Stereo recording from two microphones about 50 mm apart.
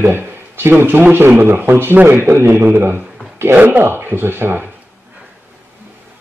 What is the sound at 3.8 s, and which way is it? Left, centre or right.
Speech, right.